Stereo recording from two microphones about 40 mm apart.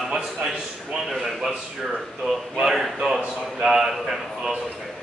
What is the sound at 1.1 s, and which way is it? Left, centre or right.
A man's voice, centre.